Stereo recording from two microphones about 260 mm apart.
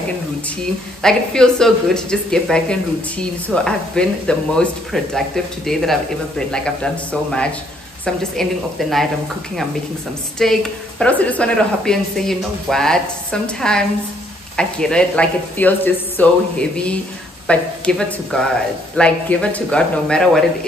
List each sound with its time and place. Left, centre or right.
1.0 s speech: centre
10.4 s speech: centre